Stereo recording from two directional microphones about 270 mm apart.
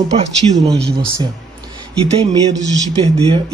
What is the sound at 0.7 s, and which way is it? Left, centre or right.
Speech, right.